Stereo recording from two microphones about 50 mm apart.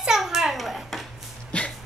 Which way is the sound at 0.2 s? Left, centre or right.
Centre.